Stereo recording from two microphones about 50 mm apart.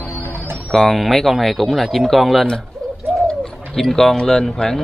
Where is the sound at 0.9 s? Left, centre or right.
Centre.